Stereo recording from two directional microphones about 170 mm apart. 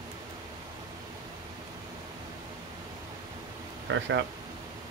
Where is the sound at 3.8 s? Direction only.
90° right.